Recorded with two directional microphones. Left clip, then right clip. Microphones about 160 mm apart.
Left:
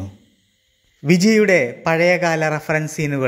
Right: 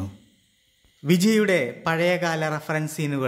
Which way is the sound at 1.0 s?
20° left (ahead or behind).